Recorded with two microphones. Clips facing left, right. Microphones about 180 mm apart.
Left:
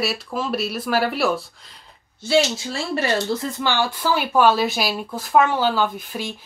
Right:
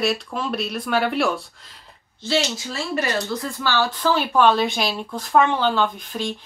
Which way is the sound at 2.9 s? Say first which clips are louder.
Left 2 dB; 30° left (ahead or behind).